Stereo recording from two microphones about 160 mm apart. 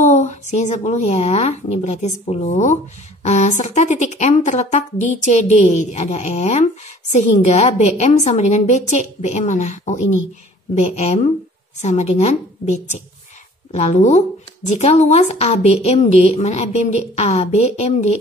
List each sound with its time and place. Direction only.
0.0 s a woman's voice: 50° left (ahead or behind)